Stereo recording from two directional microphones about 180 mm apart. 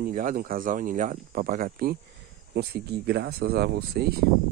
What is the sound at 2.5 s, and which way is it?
Speech, 65° right (ahead or behind).